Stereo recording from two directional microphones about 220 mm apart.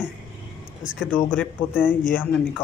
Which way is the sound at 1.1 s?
10° left (ahead or behind).